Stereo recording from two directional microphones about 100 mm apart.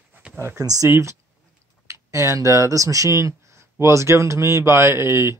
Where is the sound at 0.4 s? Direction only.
30° right (ahead or behind).